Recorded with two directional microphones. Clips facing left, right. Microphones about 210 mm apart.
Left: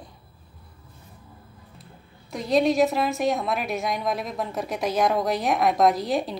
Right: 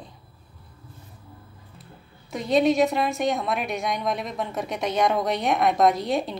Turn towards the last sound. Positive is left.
turn(degrees=0)  # may be behind; listen again after turning